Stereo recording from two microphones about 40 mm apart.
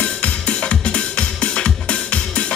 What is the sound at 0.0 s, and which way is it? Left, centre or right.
Music, left.